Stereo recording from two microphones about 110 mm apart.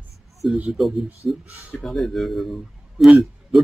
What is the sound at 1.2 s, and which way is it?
Speech, 25° left (ahead or behind).